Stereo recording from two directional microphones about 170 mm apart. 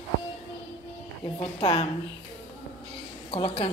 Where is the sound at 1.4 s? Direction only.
35° left (ahead or behind).